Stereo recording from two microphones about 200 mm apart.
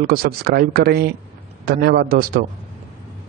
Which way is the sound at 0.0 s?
45° right (ahead or behind).